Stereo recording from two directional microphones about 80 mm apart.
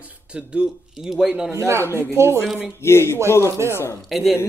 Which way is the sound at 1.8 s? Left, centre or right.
Left.